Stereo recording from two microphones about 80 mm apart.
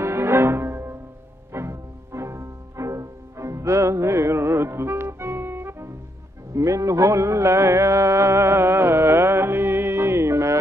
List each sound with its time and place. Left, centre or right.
0.0 s music: right